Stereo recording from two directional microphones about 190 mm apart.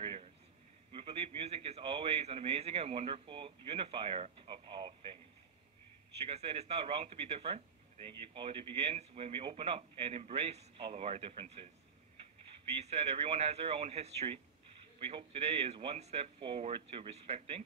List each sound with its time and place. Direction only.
0.0 s a sound: 30° right (ahead or behind)
0.9 s a man's voice: 30° right (ahead or behind)
6.1 s speech: 30° right (ahead or behind)
12.8 s speech: 35° right (ahead or behind)